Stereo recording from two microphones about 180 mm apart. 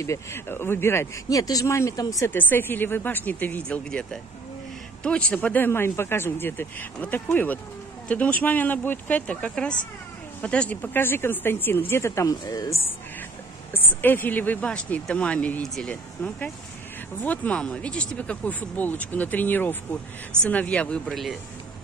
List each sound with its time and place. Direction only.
0.0 s speech: 15° left (ahead or behind)
5.3 s speech: 10° left (ahead or behind)